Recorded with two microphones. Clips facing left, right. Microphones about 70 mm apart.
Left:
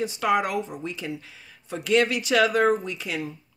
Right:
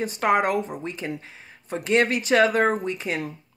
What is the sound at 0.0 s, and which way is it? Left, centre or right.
Speech, right.